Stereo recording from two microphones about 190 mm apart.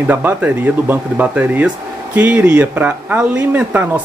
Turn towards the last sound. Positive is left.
turn(degrees=-10)  # may be behind; listen again after turning